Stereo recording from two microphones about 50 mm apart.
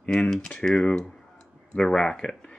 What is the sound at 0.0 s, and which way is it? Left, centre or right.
Speech, left.